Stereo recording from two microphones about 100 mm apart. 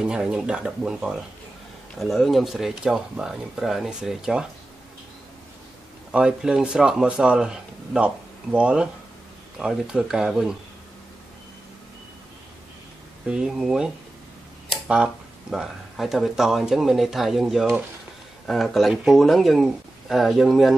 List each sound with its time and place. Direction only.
0.0 s speech: 10° right (ahead or behind)
6.1 s speech: 10° right (ahead or behind)
13.3 s speech: 10° right (ahead or behind)
14.7 s a sound: 10° right (ahead or behind)
15.5 s speech: 5° right (ahead or behind)